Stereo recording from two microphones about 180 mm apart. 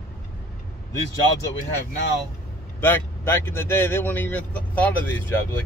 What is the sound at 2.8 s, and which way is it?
Speech, 10° left (ahead or behind).